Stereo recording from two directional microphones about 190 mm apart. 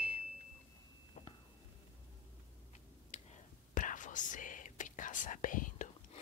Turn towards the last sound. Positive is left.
turn(degrees=45)  # may be behind; listen again after turning